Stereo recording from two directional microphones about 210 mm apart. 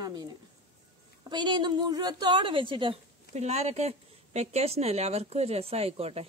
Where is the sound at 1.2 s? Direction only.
20° right (ahead or behind).